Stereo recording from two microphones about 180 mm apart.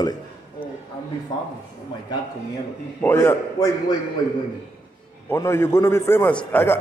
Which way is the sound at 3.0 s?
10° left (ahead or behind).